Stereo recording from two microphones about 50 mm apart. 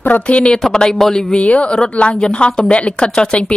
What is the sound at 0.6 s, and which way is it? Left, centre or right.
Speech, centre.